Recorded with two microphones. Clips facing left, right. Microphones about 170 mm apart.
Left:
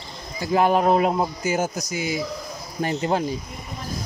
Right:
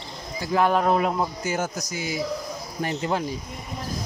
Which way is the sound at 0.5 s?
15° left (ahead or behind).